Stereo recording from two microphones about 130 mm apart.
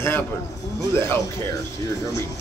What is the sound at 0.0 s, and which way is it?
A man's voice, 20° left (ahead or behind).